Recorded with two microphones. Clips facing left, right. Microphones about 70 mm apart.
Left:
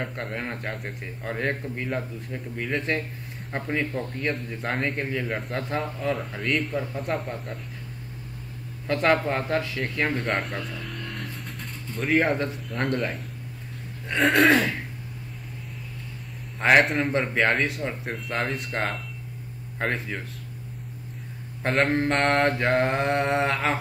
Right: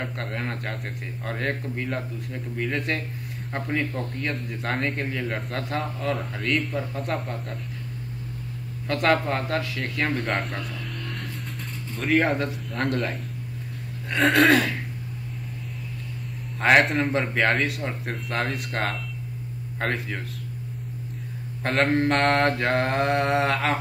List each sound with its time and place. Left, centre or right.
0.0 s speech: centre
8.8 s a man's voice: centre
16.5 s speech: centre
21.6 s speech: centre